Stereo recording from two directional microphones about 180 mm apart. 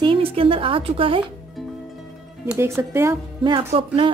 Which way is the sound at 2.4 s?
15° right (ahead or behind).